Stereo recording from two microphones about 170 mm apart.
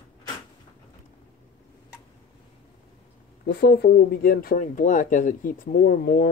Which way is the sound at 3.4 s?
75° left (ahead or behind).